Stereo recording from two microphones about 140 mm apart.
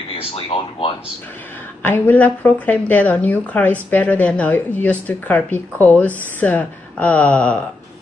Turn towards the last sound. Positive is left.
turn(degrees=10)  # may be behind; listen again after turning